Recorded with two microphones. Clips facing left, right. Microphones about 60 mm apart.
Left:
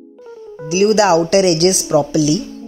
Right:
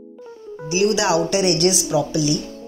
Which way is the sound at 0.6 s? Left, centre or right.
Left.